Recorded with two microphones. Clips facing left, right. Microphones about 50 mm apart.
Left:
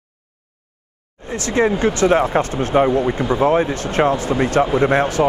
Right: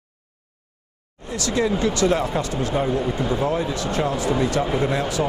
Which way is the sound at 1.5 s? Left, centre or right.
Left.